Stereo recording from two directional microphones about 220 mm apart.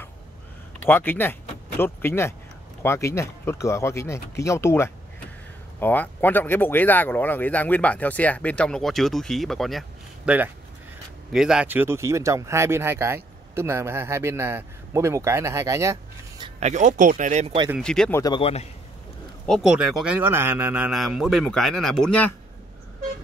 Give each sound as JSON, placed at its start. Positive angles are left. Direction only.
{"t": 0.7, "sound": "speech", "side_deg": 10}
{"t": 17.6, "sound": "speech", "side_deg": 0}
{"t": 18.2, "sound": "a man's voice", "side_deg": 25}
{"t": 19.4, "sound": "speech", "side_deg": 0}